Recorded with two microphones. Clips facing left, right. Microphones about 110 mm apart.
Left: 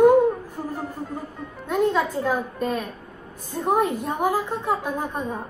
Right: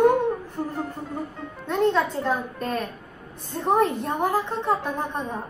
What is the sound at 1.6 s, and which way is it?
A woman's voice, 5° left (ahead or behind).